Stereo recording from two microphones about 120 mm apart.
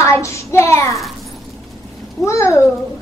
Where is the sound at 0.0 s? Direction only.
25° left (ahead or behind).